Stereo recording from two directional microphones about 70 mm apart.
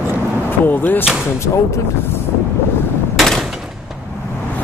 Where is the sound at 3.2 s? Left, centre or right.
Centre.